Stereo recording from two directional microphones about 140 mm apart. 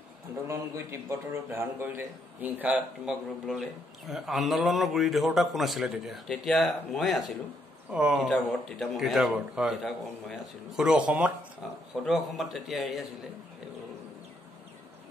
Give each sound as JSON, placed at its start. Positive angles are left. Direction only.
{"t": 1.0, "sound": "a man's voice", "side_deg": -15}